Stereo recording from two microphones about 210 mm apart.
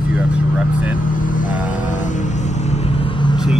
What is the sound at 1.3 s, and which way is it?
Vehicle, 40° left (ahead or behind).